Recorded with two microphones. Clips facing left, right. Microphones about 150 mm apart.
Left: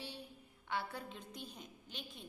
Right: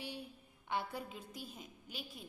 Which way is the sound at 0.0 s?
10° right (ahead or behind).